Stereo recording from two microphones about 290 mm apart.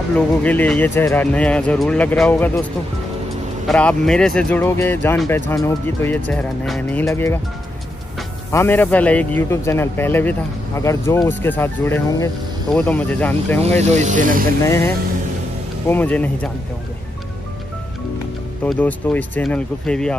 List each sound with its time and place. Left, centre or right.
0.4 s speech: centre
3.6 s a man's voice: centre
13.6 s speech: right
15.9 s speech: centre
18.6 s speech: centre